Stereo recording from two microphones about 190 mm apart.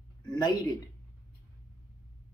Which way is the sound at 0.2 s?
20° left (ahead or behind).